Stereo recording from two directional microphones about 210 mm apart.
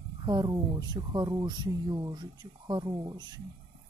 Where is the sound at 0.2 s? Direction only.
20° right (ahead or behind).